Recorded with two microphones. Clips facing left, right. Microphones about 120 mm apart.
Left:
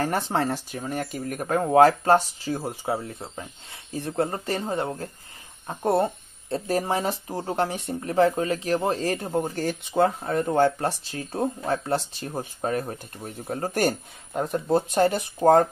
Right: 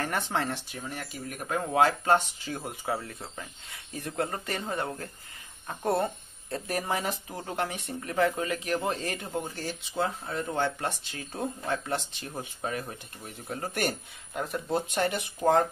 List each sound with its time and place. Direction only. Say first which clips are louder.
0.0 s speech: left 5 dB; 30° left (ahead or behind); by 10.4 s 50° left (ahead or behind)
10.4 s speech: left 8 dB; 40° left (ahead or behind)